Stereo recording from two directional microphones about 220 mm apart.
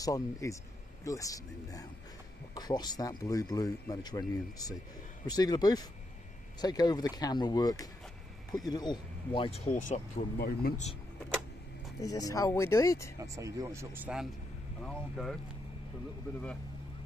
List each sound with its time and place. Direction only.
0.0 s speech: 15° left (ahead or behind)
9.7 s speech: 35° left (ahead or behind)
12.0 s speech: 15° left (ahead or behind)
13.2 s speech: 15° right (ahead or behind); by 15.3 s 5° left (ahead or behind)